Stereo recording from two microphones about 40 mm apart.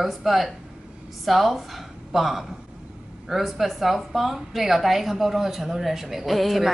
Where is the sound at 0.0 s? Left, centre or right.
Centre.